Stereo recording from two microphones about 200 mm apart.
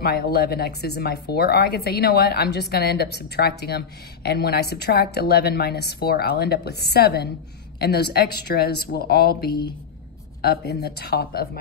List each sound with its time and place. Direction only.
0.0 s speech: 50° left (ahead or behind)